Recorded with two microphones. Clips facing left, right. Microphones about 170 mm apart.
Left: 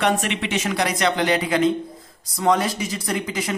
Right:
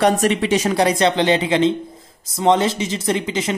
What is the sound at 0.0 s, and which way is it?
A man's voice, 40° right (ahead or behind).